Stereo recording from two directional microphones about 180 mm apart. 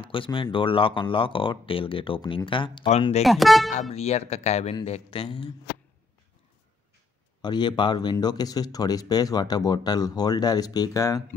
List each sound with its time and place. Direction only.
0.1 s speech: 30° left (ahead or behind)
3.3 s speech: centre (ahead or behind)
3.9 s speech: 35° left (ahead or behind)
7.4 s speech: 25° left (ahead or behind)